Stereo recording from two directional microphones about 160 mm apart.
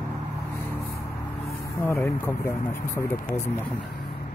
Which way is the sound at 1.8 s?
15° left (ahead or behind).